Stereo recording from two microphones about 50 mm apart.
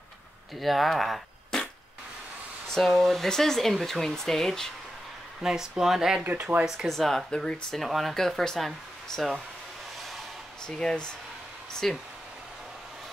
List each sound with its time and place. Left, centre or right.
0.6 s speech: centre
2.7 s speech: centre
5.4 s speech: centre
6.9 s speech: centre
7.2 s speech: centre
7.7 s speech: centre
10.7 s speech: centre